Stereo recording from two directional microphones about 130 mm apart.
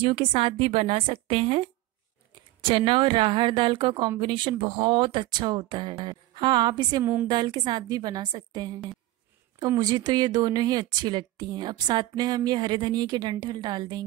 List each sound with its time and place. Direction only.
0.0 s a woman's voice: 50° right (ahead or behind)